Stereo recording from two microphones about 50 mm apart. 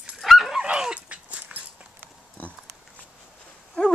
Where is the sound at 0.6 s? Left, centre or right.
Centre.